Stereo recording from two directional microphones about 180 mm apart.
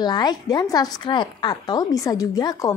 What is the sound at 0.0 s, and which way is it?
A woman's voice, 25° left (ahead or behind).